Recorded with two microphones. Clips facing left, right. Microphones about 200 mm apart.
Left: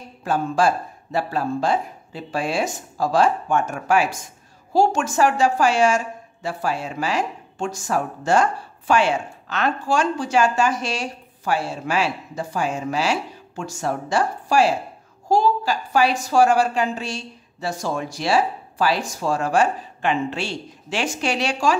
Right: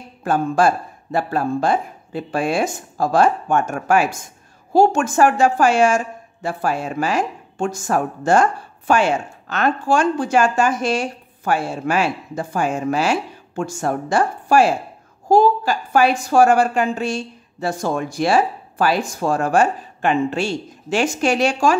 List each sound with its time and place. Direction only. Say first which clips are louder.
0.2 s a woman's voice: right 3 dB; 50° right (ahead or behind)